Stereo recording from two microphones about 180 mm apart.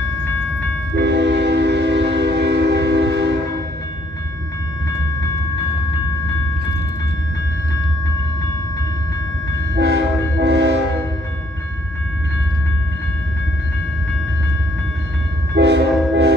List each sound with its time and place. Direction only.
0.9 s train: 75° right (ahead or behind)
9.8 s train: 70° right (ahead or behind)
15.5 s train: 70° right (ahead or behind)